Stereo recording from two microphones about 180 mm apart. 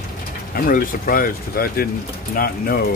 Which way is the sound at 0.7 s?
50° left (ahead or behind).